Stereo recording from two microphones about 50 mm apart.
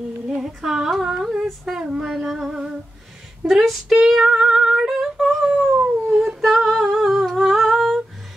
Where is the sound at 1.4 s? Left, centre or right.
Centre.